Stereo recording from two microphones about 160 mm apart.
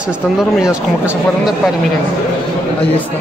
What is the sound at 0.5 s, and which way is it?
Speech, 5° right (ahead or behind).